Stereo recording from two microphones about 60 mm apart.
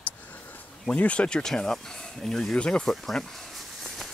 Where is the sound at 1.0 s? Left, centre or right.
Centre.